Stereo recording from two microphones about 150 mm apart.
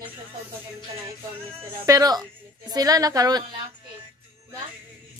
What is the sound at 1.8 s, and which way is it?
A woman's voice, 25° right (ahead or behind).